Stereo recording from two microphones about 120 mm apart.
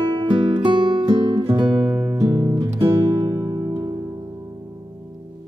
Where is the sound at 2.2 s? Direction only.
30° right (ahead or behind).